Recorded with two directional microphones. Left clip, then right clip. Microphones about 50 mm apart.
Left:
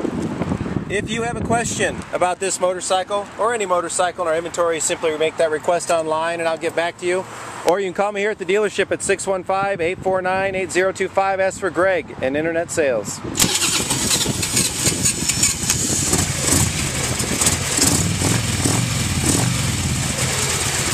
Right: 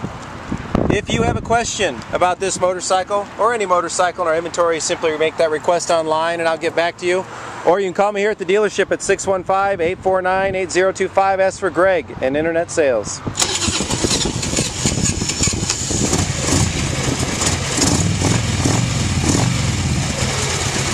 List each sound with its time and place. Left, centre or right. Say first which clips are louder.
0.9 s speech: right 4 dB; centre
5.2 s speech: right 2 dB; right
8.5 s speech: right 2 dB; right
13.4 s vehicle: even; centre
16.4 s vehicle: right 1 dB; right